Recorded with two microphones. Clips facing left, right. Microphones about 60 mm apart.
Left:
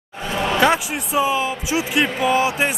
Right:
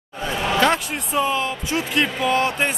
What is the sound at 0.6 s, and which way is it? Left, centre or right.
Speech, centre.